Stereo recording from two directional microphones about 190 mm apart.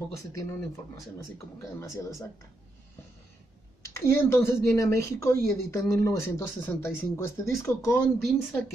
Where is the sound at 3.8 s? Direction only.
15° left (ahead or behind).